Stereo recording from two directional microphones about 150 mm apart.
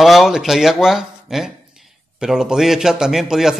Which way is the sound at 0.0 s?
Centre (ahead or behind).